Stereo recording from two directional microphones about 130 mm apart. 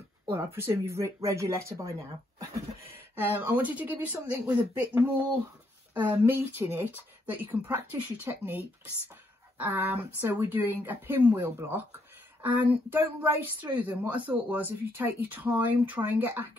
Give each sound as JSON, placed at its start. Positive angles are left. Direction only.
{"t": 0.3, "sound": "speech", "side_deg": -20}